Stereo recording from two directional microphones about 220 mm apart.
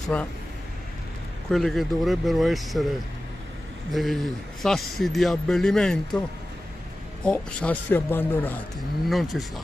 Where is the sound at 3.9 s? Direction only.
Centre (ahead or behind).